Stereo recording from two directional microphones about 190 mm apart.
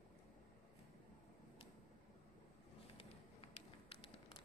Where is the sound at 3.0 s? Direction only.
30° left (ahead or behind).